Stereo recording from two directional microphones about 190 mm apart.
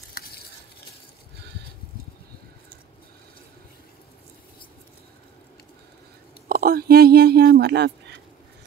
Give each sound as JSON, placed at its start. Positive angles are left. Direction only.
{"t": 0.1, "sound": "stir", "side_deg": 55}
{"t": 6.5, "sound": "speech", "side_deg": -50}